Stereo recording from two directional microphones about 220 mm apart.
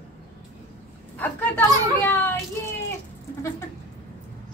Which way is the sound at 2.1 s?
10° left (ahead or behind).